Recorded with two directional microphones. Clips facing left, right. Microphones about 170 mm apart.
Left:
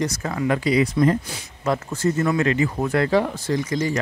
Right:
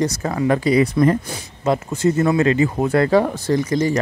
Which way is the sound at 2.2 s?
30° right (ahead or behind).